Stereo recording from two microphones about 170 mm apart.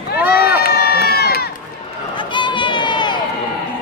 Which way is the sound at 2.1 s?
30° left (ahead or behind).